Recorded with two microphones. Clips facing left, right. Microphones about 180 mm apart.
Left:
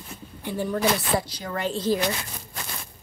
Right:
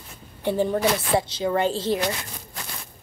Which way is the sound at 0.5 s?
25° right (ahead or behind).